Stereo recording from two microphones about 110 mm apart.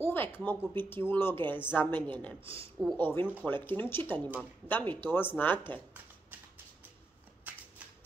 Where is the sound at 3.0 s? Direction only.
20° left (ahead or behind).